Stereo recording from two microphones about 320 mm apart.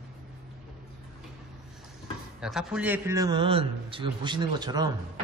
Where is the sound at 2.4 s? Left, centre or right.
Centre.